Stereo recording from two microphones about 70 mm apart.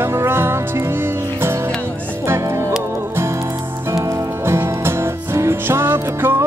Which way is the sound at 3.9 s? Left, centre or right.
Right.